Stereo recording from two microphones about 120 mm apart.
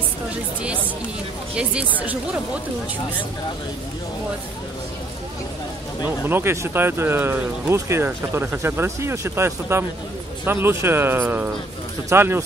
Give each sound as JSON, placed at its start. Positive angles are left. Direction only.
{"t": 1.6, "sound": "speech", "side_deg": -10}
{"t": 6.0, "sound": "speech", "side_deg": -20}